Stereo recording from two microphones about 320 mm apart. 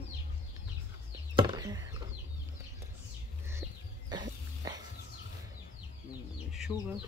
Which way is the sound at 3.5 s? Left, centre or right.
Centre.